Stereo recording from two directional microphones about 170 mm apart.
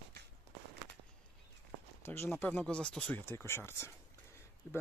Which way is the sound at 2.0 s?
15° left (ahead or behind).